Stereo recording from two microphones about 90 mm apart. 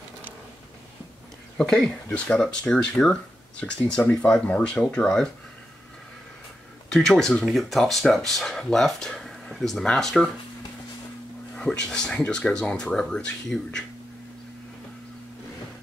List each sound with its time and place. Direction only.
1.6 s speech: 5° left (ahead or behind)
6.9 s speech: 5° left (ahead or behind)
11.5 s speech: 10° left (ahead or behind)